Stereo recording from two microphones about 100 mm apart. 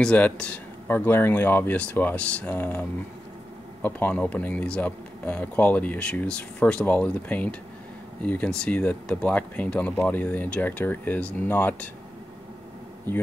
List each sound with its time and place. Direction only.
0.0 s speech: 10° left (ahead or behind)